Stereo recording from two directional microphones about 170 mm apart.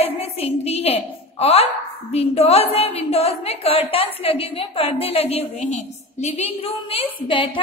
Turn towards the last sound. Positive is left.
turn(degrees=35)  # may be behind; listen again after turning